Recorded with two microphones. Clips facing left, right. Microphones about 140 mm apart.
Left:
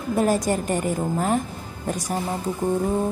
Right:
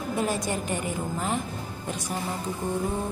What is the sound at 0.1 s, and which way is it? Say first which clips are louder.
Speech: left 7 dB; 45° left (ahead or behind).